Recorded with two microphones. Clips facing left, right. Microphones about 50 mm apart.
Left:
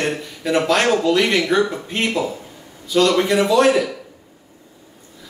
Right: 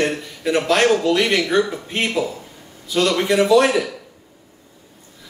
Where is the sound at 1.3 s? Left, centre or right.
Centre.